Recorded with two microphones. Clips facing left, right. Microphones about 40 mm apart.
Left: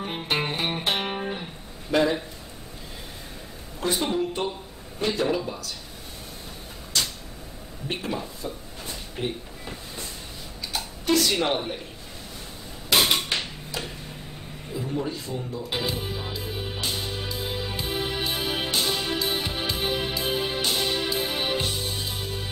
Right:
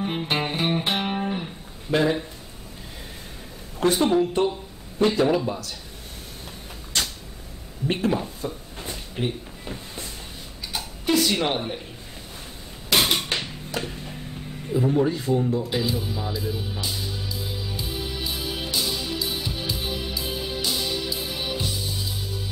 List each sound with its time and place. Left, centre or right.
0.0 s music: centre
1.9 s speech: centre
3.8 s speech: right
5.0 s speech: right
7.9 s speech: right
9.1 s a sound: centre
12.9 s mechanisms: centre
14.7 s speech: right
15.7 s music: left